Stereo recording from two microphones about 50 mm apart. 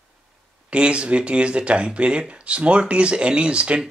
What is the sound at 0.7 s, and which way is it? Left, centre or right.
Speech, right.